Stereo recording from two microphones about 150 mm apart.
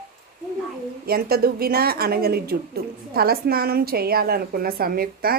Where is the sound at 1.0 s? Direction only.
90° right.